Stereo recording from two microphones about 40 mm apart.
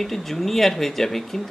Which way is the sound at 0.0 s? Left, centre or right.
Centre.